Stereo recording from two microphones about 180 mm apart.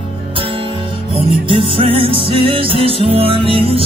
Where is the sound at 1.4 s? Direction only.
30° right (ahead or behind).